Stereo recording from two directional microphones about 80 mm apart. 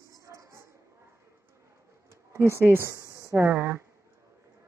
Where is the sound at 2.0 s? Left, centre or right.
Right.